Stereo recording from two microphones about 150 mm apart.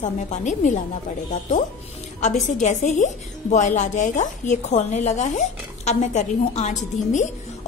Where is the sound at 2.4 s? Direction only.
55° left (ahead or behind).